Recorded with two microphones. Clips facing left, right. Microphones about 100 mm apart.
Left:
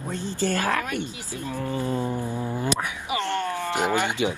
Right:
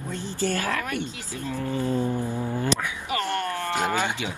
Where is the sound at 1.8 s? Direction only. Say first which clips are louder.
Right 2 dB; 15° left (ahead or behind).